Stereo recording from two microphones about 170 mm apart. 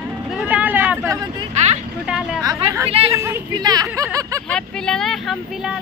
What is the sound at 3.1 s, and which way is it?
Speech, 15° right (ahead or behind).